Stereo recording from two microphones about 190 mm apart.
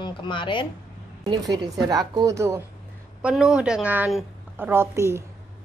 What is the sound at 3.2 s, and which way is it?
A woman's voice, 5° right (ahead or behind).